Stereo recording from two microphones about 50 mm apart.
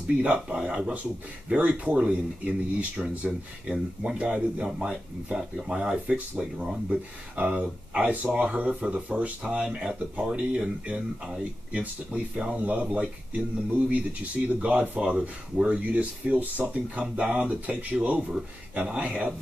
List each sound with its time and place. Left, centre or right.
0.2 s speech: right
4.6 s speech: centre
15.8 s speech: right